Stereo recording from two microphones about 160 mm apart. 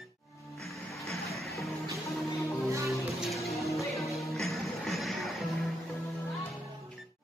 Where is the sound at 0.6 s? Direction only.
Centre (ahead or behind).